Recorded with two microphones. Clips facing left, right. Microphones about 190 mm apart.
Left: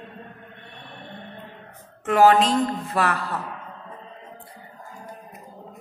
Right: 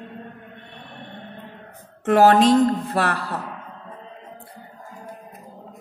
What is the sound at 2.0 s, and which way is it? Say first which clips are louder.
Speech: right 2 dB; 40° right (ahead or behind).